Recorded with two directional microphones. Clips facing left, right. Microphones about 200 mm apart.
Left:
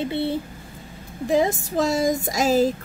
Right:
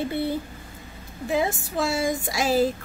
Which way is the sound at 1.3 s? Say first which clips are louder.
Left 4 dB; 40° left (ahead or behind).